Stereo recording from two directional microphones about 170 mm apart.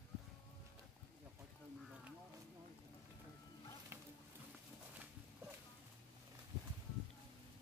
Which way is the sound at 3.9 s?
15° right (ahead or behind).